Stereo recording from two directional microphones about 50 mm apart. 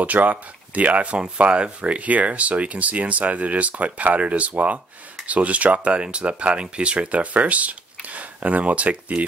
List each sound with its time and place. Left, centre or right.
0.0 s speech: right